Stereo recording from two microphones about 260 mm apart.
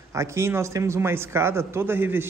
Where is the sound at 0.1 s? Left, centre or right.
Centre.